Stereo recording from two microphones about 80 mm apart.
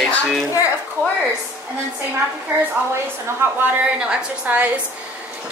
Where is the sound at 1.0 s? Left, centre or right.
Right.